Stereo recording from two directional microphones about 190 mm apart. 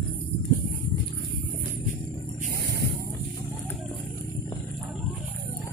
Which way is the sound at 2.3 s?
55° right (ahead or behind).